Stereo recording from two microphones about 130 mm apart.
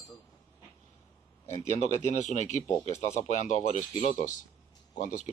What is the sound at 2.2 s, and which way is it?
Speech, 65° left (ahead or behind).